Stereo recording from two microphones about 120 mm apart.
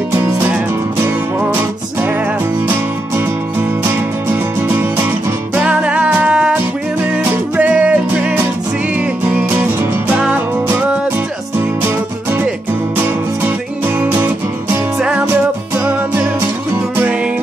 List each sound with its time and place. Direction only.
0.1 s music: 15° right (ahead or behind)
5.5 s music: 10° right (ahead or behind)
15.0 s music: 5° right (ahead or behind)
15.7 s music: 20° right (ahead or behind)